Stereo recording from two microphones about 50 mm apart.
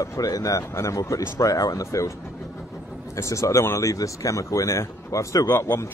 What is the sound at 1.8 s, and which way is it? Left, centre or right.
Speech, left.